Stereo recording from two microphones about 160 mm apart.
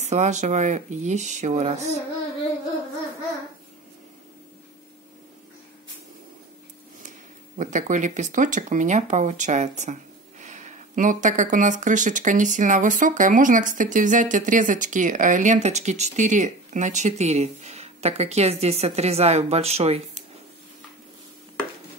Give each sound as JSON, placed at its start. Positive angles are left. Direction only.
{"t": 0.0, "sound": "speech", "side_deg": -45}
{"t": 7.5, "sound": "speech", "side_deg": -50}